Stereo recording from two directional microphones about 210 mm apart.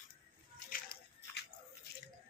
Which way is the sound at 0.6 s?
45° left (ahead or behind).